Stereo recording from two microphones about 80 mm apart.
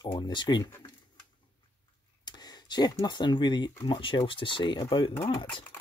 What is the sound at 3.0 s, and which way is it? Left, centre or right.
Speech, left.